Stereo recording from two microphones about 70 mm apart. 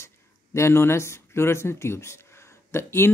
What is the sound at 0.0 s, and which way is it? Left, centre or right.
Speech, left.